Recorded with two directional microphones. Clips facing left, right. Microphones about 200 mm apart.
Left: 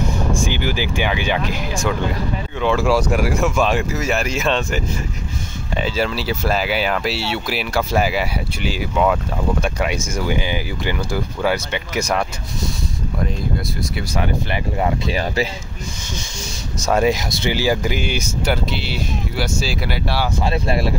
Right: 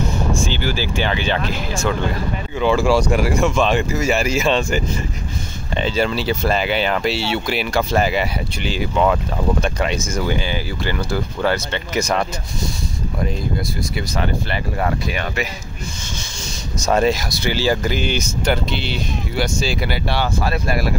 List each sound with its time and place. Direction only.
0.4 s speech: 15° left (ahead or behind)
2.6 s speech: centre (ahead or behind)
14.1 s speech: 15° left (ahead or behind)
15.0 s speech: 30° left (ahead or behind)
16.8 s speech: 5° left (ahead or behind)
17.1 s speech: 20° left (ahead or behind); by 20.2 s centre (ahead or behind)
20.3 s speech: 25° left (ahead or behind)